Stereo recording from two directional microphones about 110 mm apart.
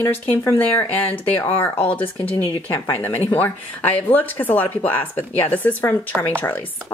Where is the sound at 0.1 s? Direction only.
25° left (ahead or behind).